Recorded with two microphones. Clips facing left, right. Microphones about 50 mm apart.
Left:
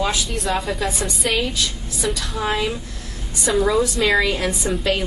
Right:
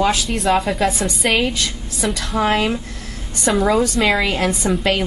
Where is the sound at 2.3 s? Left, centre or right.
Right.